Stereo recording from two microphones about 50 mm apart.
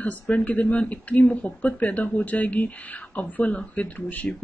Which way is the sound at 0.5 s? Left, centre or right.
Left.